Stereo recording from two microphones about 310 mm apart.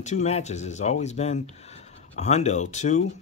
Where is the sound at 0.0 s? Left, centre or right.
Left.